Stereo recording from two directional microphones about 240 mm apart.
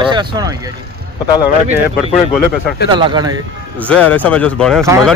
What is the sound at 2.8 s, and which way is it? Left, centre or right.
Speech, centre.